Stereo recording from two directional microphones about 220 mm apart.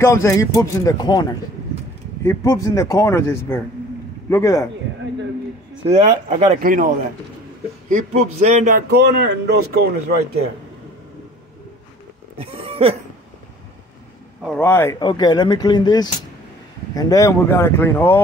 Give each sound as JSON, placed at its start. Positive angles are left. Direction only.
{"t": 0.0, "sound": "a man's voice", "side_deg": 10}
{"t": 2.2, "sound": "a man's voice", "side_deg": 15}
{"t": 5.9, "sound": "speech", "side_deg": -30}
{"t": 7.9, "sound": "speech", "side_deg": -35}
{"t": 8.9, "sound": "a man's voice", "side_deg": -45}
{"t": 12.4, "sound": "a sound", "side_deg": -25}
{"t": 14.4, "sound": "a man's voice", "side_deg": 5}